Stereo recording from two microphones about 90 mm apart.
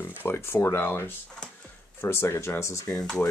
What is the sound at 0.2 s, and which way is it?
Speech, 25° left (ahead or behind).